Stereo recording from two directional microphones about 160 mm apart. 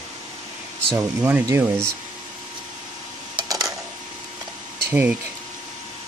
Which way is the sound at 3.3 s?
25° right (ahead or behind).